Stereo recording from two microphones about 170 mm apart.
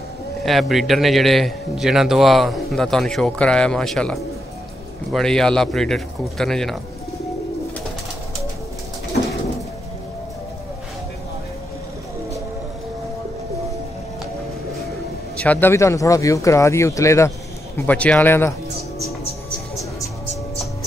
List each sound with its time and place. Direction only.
0.5 s a man's voice: centre (ahead or behind)
15.3 s speech: 10° left (ahead or behind)